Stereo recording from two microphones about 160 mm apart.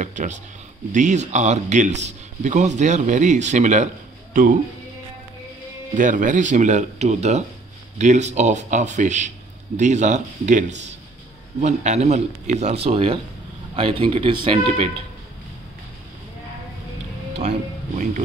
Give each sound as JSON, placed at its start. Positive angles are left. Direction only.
{"t": 0.0, "sound": "a sound", "side_deg": -50}
{"t": 0.9, "sound": "a man's voice", "side_deg": -50}
{"t": 5.9, "sound": "a man's voice", "side_deg": -55}
{"t": 17.4, "sound": "music", "side_deg": -50}